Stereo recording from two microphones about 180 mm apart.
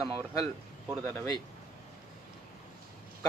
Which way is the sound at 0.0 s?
15° left (ahead or behind).